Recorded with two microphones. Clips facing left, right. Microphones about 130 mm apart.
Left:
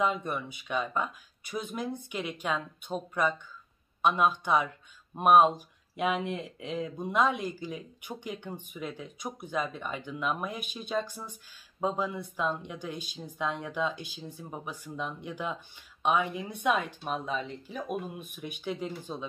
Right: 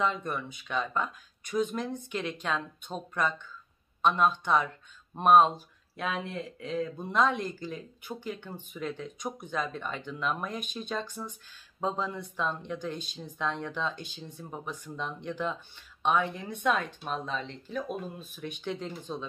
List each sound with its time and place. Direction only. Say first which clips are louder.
0.0 s speech: left 1 dB; 10° left (ahead or behind)